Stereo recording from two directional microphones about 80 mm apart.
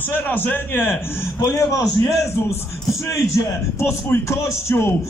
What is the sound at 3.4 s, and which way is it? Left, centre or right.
A man's voice, left.